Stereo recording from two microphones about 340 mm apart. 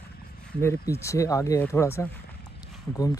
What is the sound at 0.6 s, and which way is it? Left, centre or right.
Speech, centre.